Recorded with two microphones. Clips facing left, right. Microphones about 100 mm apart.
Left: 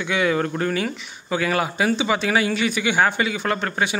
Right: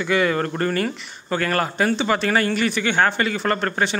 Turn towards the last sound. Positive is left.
turn(degrees=5)  # may be behind; listen again after turning